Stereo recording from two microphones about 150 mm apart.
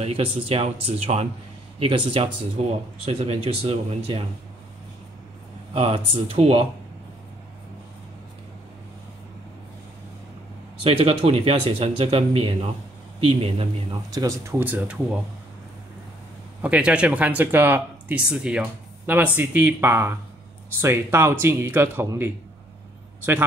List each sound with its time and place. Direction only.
0.0 s speech: 40° right (ahead or behind)
2.6 s speech: 45° right (ahead or behind)
5.7 s speech: 40° right (ahead or behind)
10.8 s speech: 40° right (ahead or behind)
14.1 s speech: 20° right (ahead or behind)
16.6 s speech: 5° right (ahead or behind)